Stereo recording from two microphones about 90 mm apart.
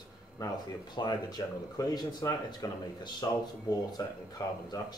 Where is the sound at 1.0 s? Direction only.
50° left (ahead or behind).